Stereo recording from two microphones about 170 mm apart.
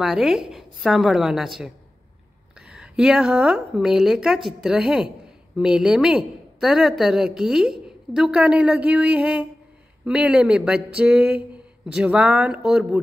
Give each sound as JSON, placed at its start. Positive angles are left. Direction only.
{"t": 0.0, "sound": "a woman's voice", "side_deg": -5}